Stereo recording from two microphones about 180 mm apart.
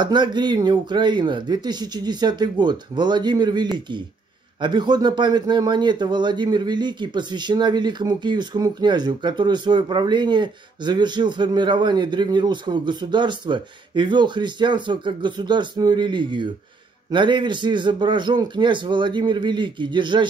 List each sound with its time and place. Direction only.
0.0 s speech: 25° right (ahead or behind)